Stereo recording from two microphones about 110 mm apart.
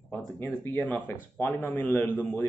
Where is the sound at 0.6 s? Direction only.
20° left (ahead or behind).